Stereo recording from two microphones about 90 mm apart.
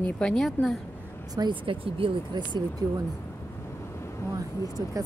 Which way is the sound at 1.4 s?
65° right (ahead or behind).